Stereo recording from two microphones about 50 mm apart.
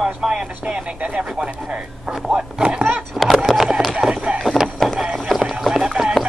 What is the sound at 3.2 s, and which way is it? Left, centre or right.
Speech, centre.